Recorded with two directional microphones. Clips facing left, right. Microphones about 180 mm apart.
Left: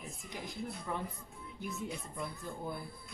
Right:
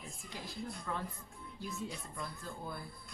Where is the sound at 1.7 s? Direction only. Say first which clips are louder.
Left 2 dB; 20° left (ahead or behind).